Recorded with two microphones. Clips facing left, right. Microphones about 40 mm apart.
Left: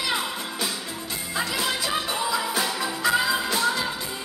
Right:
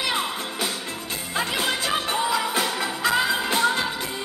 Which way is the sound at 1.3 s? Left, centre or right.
Right.